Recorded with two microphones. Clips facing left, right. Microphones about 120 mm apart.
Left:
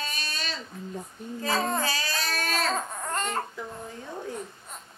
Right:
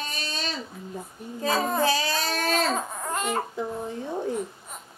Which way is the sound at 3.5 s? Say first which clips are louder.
Right 7 dB; 30° right (ahead or behind).